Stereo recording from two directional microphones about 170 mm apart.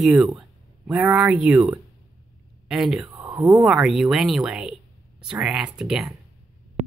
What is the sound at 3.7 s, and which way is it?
Speech, centre (ahead or behind).